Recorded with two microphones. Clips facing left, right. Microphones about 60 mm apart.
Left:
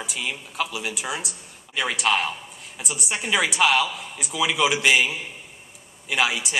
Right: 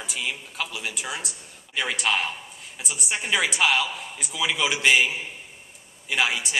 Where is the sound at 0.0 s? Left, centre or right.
Centre.